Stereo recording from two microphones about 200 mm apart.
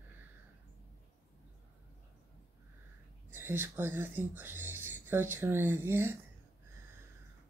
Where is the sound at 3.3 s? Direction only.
10° right (ahead or behind).